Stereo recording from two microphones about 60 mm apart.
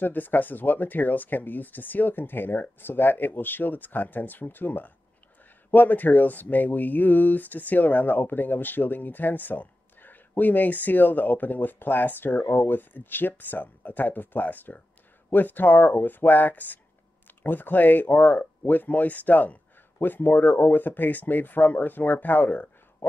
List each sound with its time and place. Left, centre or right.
0.0 s speech: left